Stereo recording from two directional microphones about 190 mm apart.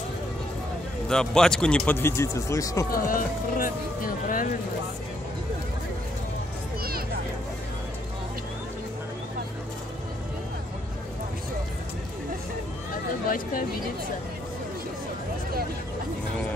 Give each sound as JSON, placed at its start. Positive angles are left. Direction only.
{"t": 1.0, "sound": "speech", "side_deg": 5}
{"t": 2.9, "sound": "speech", "side_deg": 45}
{"t": 13.3, "sound": "speech", "side_deg": 45}